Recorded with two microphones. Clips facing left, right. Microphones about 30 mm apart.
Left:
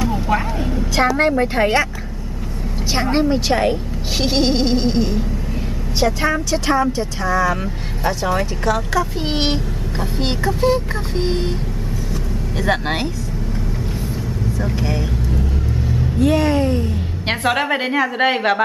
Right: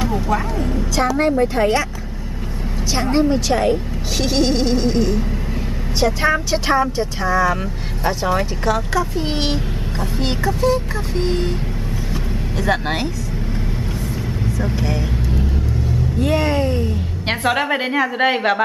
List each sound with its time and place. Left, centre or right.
0.9 s speech: left
2.9 s speech: left
6.2 s a woman's voice: centre
9.2 s speech: centre
12.5 s speech: centre
14.8 s a woman's voice: centre
16.2 s a woman's voice: centre